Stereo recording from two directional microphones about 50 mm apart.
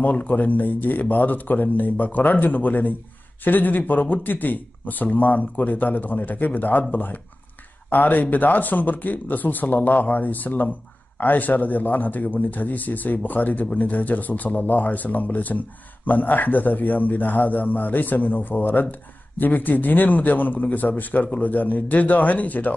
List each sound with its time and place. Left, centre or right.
0.0 s a man's voice: left